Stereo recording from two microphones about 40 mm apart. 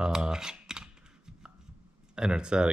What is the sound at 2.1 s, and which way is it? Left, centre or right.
Speech, right.